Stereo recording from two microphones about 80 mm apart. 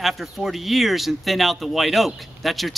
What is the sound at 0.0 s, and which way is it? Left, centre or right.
Speech, centre.